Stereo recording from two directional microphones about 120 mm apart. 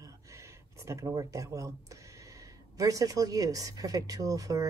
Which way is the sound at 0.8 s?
30° right (ahead or behind).